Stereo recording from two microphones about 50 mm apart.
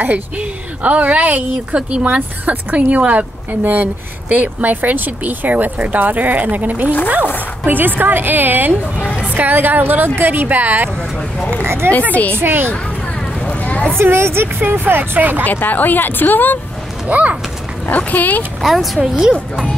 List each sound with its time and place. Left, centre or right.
0.0 s speech: right
1.8 s speech: centre
2.0 s speech: right
11.5 s speech: right
12.1 s speech: left
12.4 s speech: right
13.5 s a sound: left
14.1 s speech: right
15.4 s speech: left
17.1 s speech: right
17.9 s speech: left
18.6 s speech: centre